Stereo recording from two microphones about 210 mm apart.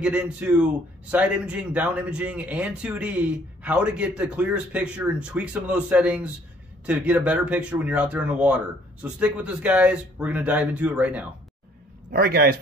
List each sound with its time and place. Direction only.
0.0 s speech: 5° right (ahead or behind)
12.1 s a man's voice: 45° right (ahead or behind)